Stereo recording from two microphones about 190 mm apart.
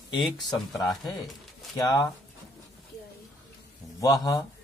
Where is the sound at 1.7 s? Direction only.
15° left (ahead or behind).